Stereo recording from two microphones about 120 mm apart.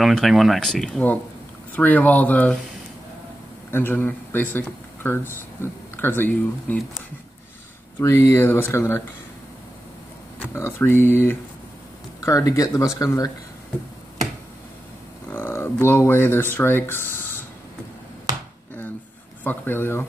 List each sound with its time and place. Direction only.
0.0 s speech: centre (ahead or behind)
3.7 s speech: 15° left (ahead or behind)
8.0 s speech: 25° left (ahead or behind)
10.4 s speech: 20° left (ahead or behind)
15.2 s speech: 15° left (ahead or behind)
19.4 s speech: 15° left (ahead or behind)